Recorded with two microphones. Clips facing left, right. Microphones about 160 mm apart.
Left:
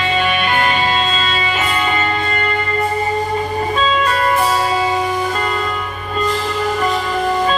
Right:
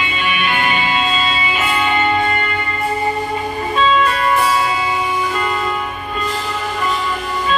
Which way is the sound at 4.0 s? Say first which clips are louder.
Even; 40° left (ahead or behind).